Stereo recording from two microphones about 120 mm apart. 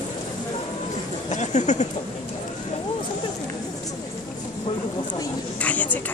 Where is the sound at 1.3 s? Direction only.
80° left.